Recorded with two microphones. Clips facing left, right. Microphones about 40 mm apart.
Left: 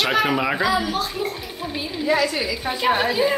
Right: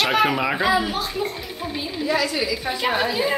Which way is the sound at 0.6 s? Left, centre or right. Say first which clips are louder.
Right 1 dB; right.